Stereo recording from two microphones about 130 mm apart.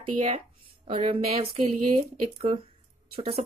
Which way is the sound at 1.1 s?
50° right (ahead or behind).